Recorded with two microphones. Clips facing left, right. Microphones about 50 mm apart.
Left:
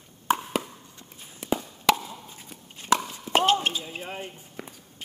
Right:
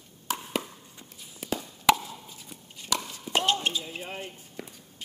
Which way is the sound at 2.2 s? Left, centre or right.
Left.